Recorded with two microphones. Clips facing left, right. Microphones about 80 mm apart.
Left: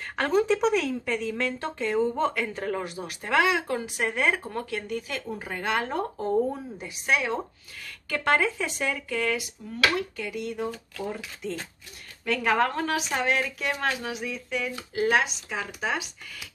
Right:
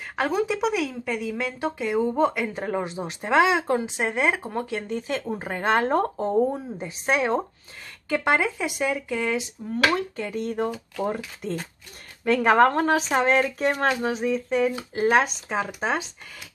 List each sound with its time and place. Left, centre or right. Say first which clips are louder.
0.1 s a woman's voice: left 1 dB; centre; by 6.0 s right
6.1 s speech: right 3 dB; right
8.1 s speech: right 2 dB; centre
9.9 s speech: right 3 dB; right